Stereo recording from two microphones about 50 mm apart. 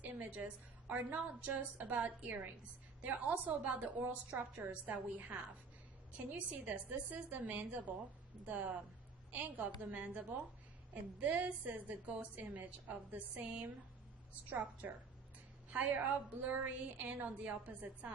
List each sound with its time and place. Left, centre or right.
0.0 s a woman's voice: right